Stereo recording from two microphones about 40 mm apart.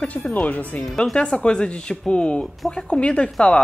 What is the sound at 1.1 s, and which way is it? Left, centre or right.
Speech, left.